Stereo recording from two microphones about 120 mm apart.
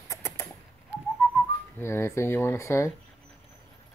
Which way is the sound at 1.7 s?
20° left (ahead or behind).